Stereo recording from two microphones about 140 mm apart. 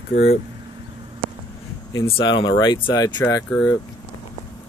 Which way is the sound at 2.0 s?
35° left (ahead or behind).